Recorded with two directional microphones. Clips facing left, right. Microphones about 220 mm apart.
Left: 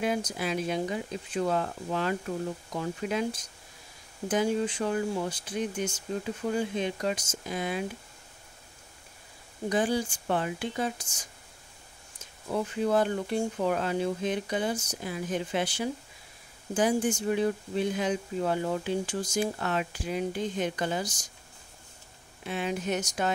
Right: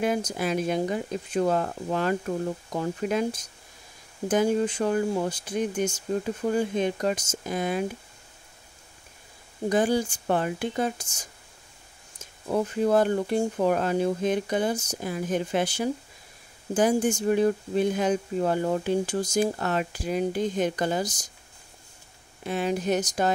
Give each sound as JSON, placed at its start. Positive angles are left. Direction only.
{"t": 0.0, "sound": "speech", "side_deg": -50}
{"t": 4.3, "sound": "speech", "side_deg": -45}
{"t": 9.7, "sound": "speech", "side_deg": -45}
{"t": 12.4, "sound": "speech", "side_deg": -45}
{"t": 22.4, "sound": "speech", "side_deg": -40}